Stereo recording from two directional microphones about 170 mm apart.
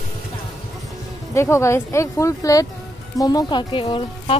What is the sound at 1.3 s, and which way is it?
Speech, 15° left (ahead or behind).